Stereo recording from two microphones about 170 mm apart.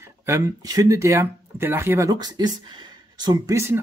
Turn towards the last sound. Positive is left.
turn(degrees=-15)  # may be behind; listen again after turning